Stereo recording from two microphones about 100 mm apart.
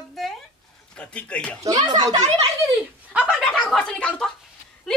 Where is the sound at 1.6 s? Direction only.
45° right (ahead or behind).